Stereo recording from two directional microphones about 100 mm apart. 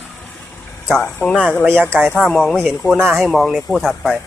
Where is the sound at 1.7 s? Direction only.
20° right (ahead or behind).